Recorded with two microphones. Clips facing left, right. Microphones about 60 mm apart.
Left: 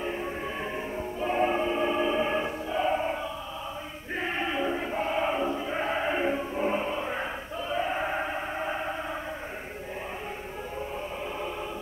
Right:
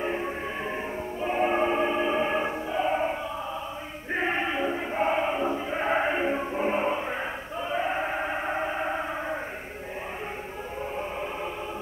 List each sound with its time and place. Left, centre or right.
0.0 s music: right
1.2 s music: centre
1.6 s music: right
1.9 s music: centre
4.1 s choir: right
4.9 s a sound: right
5.2 s a sound: centre
5.9 s choir: right
6.3 s music: centre
7.7 s a sound: centre
8.6 s music: centre